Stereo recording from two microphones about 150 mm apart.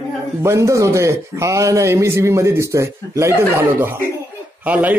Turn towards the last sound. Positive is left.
turn(degrees=-10)  # may be behind; listen again after turning